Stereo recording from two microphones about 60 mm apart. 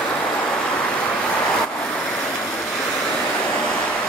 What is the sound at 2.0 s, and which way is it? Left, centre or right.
Waves, centre.